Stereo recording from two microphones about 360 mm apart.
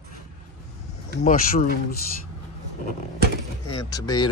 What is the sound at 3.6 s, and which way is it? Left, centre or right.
Speech, centre.